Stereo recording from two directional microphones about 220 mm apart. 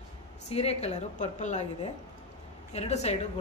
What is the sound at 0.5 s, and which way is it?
A woman's voice, 30° left (ahead or behind).